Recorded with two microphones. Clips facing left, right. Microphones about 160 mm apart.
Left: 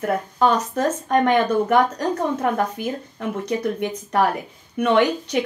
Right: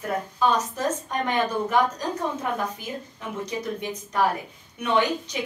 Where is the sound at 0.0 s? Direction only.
65° left (ahead or behind).